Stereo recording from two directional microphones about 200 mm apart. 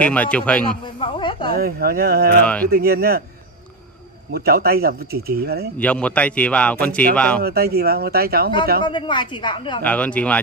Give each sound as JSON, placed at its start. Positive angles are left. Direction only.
{"t": 0.0, "sound": "speech", "side_deg": 5}
{"t": 0.9, "sound": "speech", "side_deg": 25}
{"t": 1.5, "sound": "speech", "side_deg": -50}
{"t": 2.4, "sound": "speech", "side_deg": 5}
{"t": 2.7, "sound": "speech", "side_deg": -50}
{"t": 4.3, "sound": "speech", "side_deg": -50}
{"t": 5.8, "sound": "speech", "side_deg": 5}
{"t": 7.4, "sound": "speech", "side_deg": -50}
{"t": 8.8, "sound": "a woman's voice", "side_deg": 25}
{"t": 9.8, "sound": "speech", "side_deg": 5}